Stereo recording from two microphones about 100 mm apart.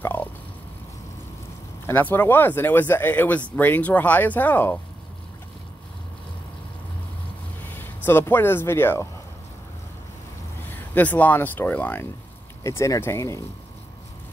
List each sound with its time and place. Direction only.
0.0 s fowl: 20° left (ahead or behind)
1.9 s speech: 20° left (ahead or behind)
7.6 s speech: 20° left (ahead or behind)
10.7 s speech: 15° left (ahead or behind)
12.6 s speech: 30° left (ahead or behind)